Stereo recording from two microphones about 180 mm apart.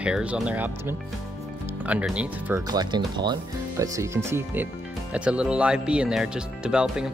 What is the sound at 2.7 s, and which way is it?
Speech, 25° right (ahead or behind).